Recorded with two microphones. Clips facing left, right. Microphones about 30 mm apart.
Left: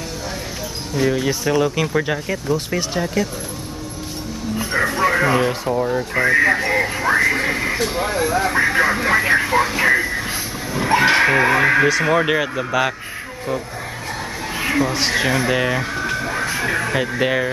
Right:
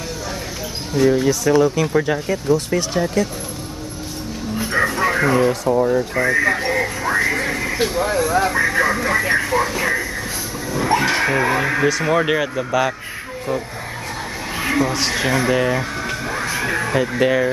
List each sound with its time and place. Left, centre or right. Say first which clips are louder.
0.9 s speech: right 3 dB; centre
1.2 s speech: right 3 dB; left
2.0 s speech: right 2 dB; centre
4.7 s a sound: right 1 dB; centre
5.3 s speech: right 2 dB; left
5.7 s speech: right 3 dB; centre
6.1 s speech: left 5 dB; left
6.7 s a sound: left 2 dB; centre
7.9 s speech: right 1 dB; left
10.7 s a sound: left 2 dB; left
12.1 s speech: even; centre
14.6 s speech: even; centre